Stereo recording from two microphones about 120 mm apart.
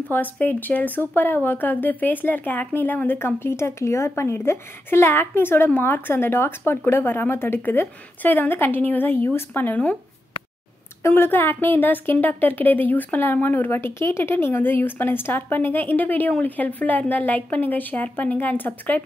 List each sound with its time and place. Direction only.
0.1 s speech: 15° left (ahead or behind)
11.0 s speech: 20° left (ahead or behind)